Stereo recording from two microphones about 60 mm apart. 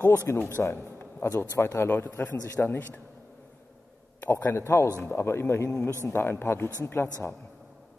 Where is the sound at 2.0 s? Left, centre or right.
Left.